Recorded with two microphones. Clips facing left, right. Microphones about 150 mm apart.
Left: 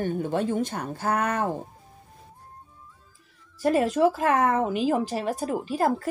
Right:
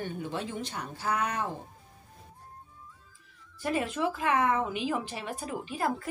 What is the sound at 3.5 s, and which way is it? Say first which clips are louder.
A woman's voice: left 9 dB; 40° left (ahead or behind).